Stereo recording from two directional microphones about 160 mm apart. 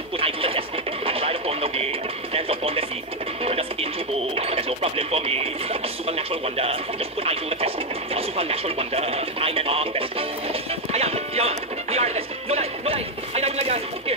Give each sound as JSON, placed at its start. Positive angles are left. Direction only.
{"t": 0.2, "sound": "television", "side_deg": -35}
{"t": 3.4, "sound": "speech", "side_deg": -40}